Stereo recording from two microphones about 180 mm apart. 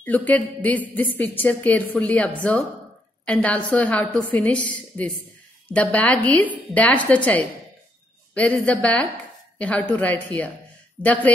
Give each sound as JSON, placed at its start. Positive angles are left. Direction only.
{"t": 0.0, "sound": "a woman's voice", "side_deg": 10}
{"t": 8.4, "sound": "a woman's voice", "side_deg": 5}